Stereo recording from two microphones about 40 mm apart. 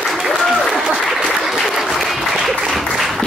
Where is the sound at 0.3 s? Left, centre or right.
Centre.